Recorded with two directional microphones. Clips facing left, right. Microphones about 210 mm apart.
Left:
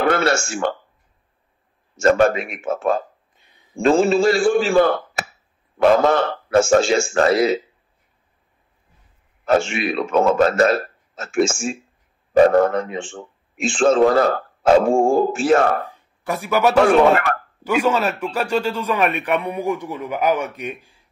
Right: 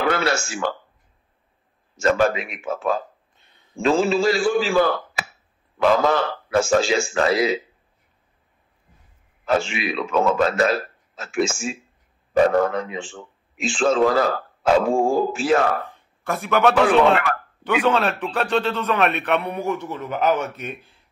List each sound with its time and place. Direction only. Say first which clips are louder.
0.0 s speech: left 3 dB; 50° left (ahead or behind)
2.0 s a man's voice: left 4 dB; 50° left (ahead or behind)
9.4 s a man's voice: left 4 dB; 45° left (ahead or behind)
16.3 s a man's voice: even; 5° left (ahead or behind)
16.8 s a man's voice: left 2 dB; 45° left (ahead or behind)
17.8 s a man's voice: left 1 dB; 5° left (ahead or behind)